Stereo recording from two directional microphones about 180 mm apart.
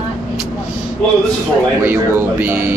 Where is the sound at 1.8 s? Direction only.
10° right (ahead or behind).